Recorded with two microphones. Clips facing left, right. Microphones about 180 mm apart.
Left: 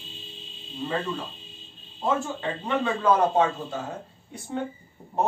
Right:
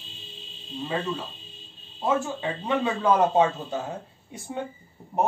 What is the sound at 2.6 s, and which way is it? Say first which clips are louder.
Speech: even; 15° right (ahead or behind).